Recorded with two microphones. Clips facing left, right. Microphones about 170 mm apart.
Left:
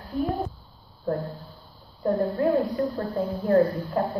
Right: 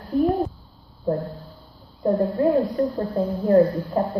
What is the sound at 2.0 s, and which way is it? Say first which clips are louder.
A woman's voice: right 3 dB; 15° right (ahead or behind).